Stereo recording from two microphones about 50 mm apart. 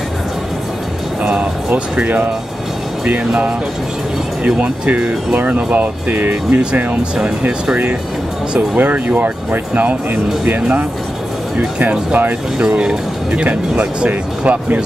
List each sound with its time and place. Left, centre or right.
1.2 s music: centre
1.7 s speech: right
4.6 s speech: right
5.4 s speech: right
8.5 s speech: right